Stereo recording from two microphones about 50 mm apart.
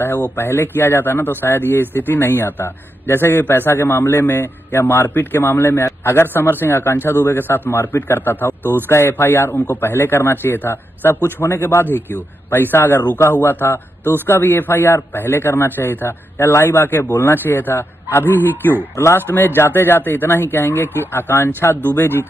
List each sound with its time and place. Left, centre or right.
0.4 s a man's voice: left